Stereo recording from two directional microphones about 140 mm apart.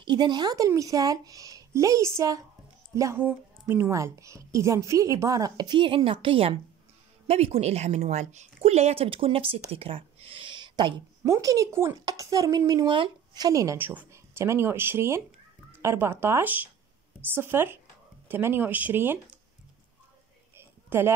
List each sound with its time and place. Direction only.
0.0 s speech: 30° right (ahead or behind)
11.2 s speech: 20° right (ahead or behind)
20.5 s a sound: 15° right (ahead or behind)